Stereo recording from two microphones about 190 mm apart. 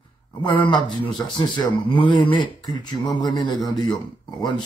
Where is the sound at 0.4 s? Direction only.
25° left (ahead or behind).